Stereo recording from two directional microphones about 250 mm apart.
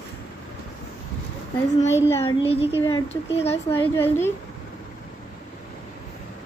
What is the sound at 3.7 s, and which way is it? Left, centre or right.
Speech, centre.